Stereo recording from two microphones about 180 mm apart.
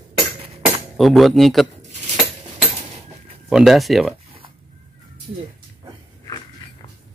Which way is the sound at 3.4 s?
Centre (ahead or behind).